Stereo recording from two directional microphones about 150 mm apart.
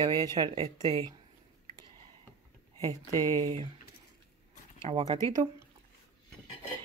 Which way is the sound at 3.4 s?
35° right (ahead or behind).